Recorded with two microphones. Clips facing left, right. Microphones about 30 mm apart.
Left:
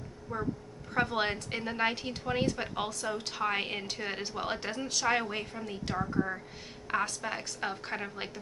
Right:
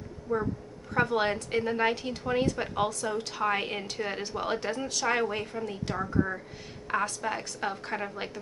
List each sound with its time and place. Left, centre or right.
0.3 s a woman's voice: centre